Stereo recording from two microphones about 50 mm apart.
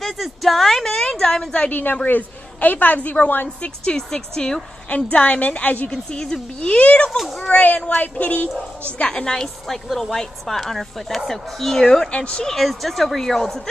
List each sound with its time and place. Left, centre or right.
0.0 s a sound: centre
1.7 s a woman's voice: left
3.4 s a woman's voice: left
4.8 s speech: left
5.9 s a woman's voice: centre
6.6 s speech: left
8.9 s a woman's voice: centre
12.4 s speech: centre